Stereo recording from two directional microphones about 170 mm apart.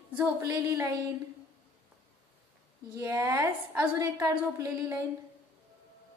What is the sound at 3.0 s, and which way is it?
A woman's voice, 10° right (ahead or behind).